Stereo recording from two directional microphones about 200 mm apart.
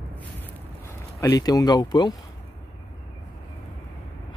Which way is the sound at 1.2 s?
20° left (ahead or behind).